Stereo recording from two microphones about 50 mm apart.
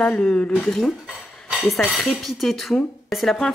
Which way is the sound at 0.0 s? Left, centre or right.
Left.